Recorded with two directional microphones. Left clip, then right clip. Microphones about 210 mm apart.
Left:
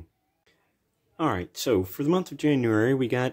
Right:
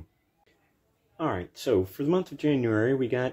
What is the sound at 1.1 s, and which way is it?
Speech, 40° left (ahead or behind).